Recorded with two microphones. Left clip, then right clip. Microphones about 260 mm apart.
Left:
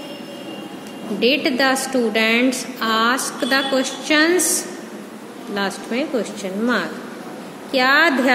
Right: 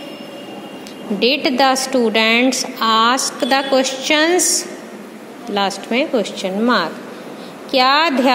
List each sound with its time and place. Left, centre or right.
1.2 s a woman's voice: right